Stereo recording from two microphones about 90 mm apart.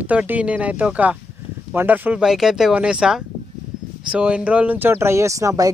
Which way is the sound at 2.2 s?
5° right (ahead or behind).